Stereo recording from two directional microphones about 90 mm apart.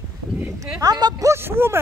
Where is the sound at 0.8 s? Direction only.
45° right (ahead or behind).